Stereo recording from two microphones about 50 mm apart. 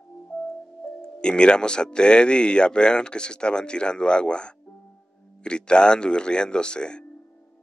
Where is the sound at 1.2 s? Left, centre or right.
Centre.